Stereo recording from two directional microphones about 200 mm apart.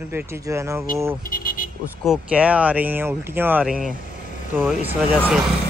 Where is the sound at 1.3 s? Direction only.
45° left (ahead or behind).